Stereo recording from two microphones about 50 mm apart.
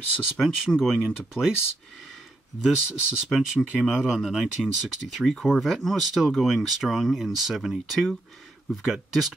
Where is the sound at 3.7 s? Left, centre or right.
Centre.